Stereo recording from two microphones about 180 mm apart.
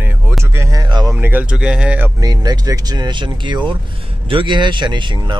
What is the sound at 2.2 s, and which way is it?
Speech, 20° right (ahead or behind).